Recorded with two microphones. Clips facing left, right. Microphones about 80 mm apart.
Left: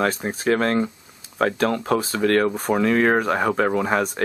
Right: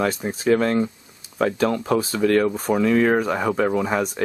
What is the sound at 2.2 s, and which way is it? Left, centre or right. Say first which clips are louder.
Speech: even; left.